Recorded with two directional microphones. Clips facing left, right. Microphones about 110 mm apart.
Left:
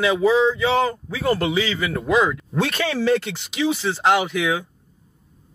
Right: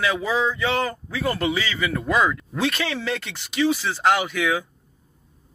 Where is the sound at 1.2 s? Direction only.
Centre (ahead or behind).